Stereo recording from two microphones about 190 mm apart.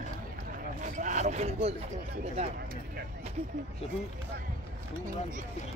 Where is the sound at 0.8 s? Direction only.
40° right (ahead or behind).